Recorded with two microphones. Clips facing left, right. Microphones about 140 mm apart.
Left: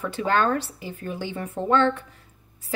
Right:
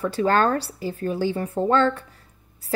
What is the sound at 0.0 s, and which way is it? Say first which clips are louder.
Speech: right 3 dB; 35° right (ahead or behind).